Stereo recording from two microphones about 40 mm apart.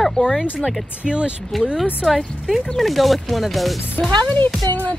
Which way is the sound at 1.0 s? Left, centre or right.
Right.